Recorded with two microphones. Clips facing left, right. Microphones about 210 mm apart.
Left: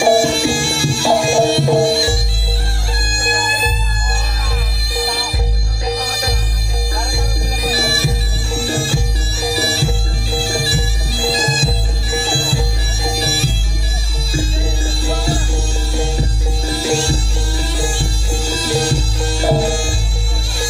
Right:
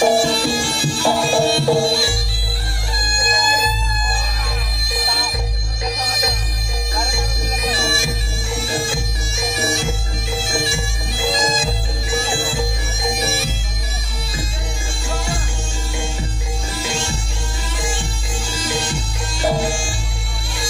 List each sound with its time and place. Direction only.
0.0 s music: 10° left (ahead or behind)
6.0 s music: 35° left (ahead or behind)
7.6 s bagpipes: 35° left (ahead or behind)
15.0 s music: 35° left (ahead or behind)